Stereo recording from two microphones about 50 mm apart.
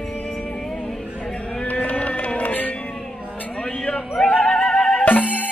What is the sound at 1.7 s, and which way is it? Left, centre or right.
Music, left.